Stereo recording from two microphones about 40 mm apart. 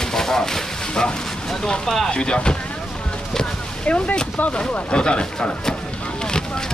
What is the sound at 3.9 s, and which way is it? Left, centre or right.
Speech, left.